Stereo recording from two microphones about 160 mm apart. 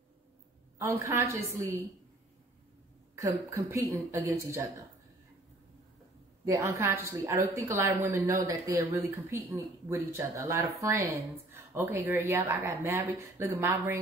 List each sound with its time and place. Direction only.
0.7 s a woman's voice: 15° right (ahead or behind)
3.2 s a woman's voice: 20° right (ahead or behind)
6.4 s a woman's voice: 15° right (ahead or behind)